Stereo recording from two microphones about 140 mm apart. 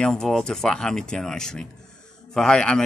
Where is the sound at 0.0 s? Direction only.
5° left (ahead or behind).